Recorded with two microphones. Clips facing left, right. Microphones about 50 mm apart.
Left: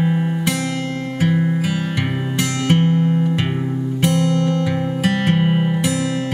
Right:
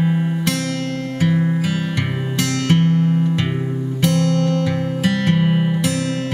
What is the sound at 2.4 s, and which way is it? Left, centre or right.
Music, centre.